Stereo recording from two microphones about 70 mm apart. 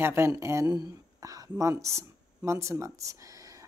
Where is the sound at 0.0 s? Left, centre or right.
Right.